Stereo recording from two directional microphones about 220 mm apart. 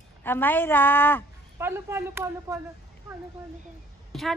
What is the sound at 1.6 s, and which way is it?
Speech, 10° right (ahead or behind).